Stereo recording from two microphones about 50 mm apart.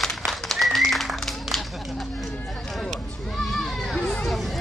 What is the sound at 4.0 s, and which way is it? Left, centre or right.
Children playing, left.